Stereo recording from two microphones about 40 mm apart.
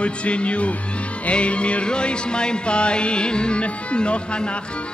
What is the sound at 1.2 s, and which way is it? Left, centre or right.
Music, left.